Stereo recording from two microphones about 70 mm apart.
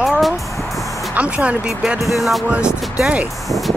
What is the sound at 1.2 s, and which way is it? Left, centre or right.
Speech, centre.